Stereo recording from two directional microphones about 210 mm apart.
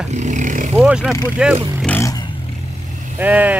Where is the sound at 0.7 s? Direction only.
5° right (ahead or behind).